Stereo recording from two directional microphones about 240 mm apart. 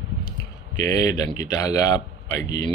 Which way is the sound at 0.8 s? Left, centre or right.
Centre.